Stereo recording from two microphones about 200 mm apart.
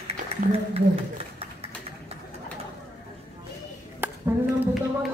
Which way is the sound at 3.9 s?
10° right (ahead or behind).